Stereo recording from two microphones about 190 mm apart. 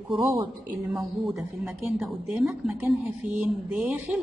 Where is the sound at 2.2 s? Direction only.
Centre (ahead or behind).